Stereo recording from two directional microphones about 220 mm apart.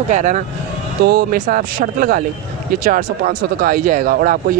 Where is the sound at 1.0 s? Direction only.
45° right (ahead or behind).